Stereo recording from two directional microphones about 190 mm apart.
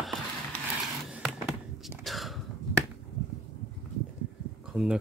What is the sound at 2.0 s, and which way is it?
Throat clearing, centre (ahead or behind).